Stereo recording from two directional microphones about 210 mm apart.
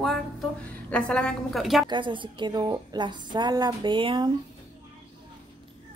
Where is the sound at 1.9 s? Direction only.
25° right (ahead or behind).